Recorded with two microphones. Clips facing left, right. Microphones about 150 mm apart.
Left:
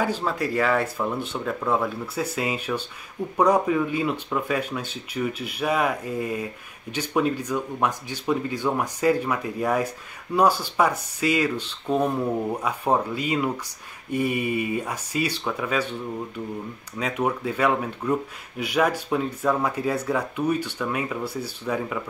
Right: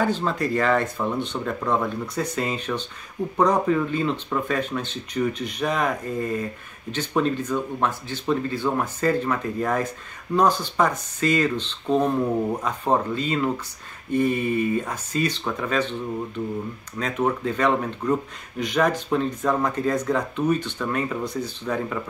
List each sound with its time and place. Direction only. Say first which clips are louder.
0.0 s speech: right 2 dB; 10° left (ahead or behind)
17.0 s speech: right 1 dB; 10° left (ahead or behind)